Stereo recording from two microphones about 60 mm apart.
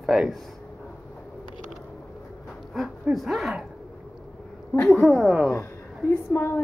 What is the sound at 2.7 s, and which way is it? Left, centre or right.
Speech, centre.